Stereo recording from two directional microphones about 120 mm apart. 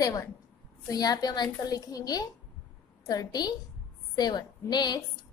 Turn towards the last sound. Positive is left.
turn(degrees=35)  # may be behind; listen again after turning